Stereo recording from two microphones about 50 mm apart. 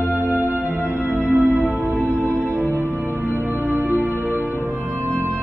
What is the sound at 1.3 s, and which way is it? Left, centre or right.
Music, right.